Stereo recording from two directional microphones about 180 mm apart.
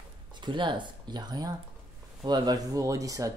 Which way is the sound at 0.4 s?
25° right (ahead or behind).